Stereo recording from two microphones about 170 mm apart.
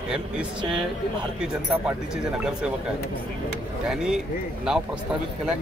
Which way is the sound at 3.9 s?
5° right (ahead or behind).